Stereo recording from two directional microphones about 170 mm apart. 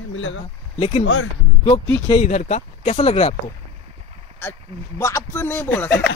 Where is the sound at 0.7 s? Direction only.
35° left (ahead or behind).